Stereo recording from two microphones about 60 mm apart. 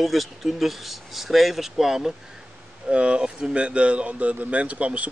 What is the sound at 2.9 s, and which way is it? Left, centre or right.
Speech, centre.